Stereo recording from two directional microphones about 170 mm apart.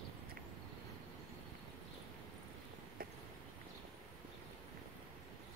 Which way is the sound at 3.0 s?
60° right (ahead or behind).